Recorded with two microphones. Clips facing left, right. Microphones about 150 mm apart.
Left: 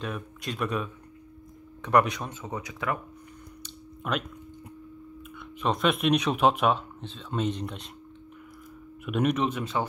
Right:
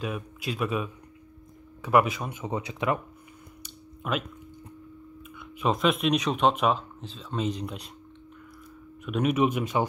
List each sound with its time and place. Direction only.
0.0 s speech: 5° right (ahead or behind)
2.4 s speech: 20° right (ahead or behind)
3.6 s a sound: centre (ahead or behind)
5.6 s speech: centre (ahead or behind)
9.0 s speech: centre (ahead or behind)